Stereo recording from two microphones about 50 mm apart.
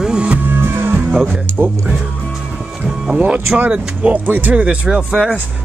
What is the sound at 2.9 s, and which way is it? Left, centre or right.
Music, right.